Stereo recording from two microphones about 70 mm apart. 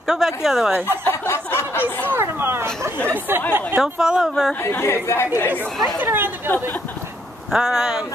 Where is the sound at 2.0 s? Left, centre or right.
Right.